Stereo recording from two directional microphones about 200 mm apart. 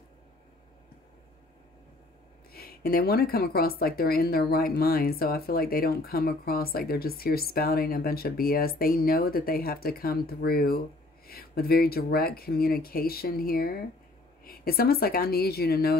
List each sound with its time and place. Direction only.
2.5 s speech: 50° left (ahead or behind)